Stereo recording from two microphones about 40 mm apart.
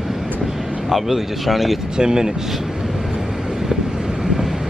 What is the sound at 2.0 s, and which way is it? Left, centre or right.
Speech, centre.